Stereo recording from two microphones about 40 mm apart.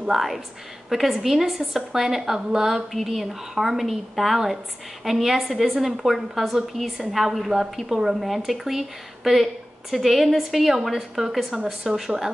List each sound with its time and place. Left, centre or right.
0.0 s a woman's voice: centre
2.9 s a woman's voice: centre